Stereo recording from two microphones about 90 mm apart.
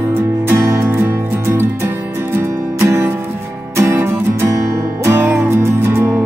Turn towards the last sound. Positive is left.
turn(degrees=-30)  # may be behind; listen again after turning